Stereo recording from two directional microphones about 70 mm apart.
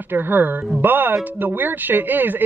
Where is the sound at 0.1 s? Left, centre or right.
Right.